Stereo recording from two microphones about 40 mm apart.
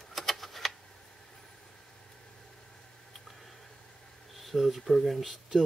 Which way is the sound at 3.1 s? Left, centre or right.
Centre.